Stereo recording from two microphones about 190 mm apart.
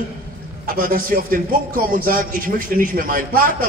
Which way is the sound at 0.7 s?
50° right (ahead or behind).